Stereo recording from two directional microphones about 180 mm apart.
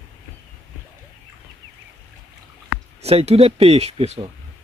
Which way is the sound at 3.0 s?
35° right (ahead or behind).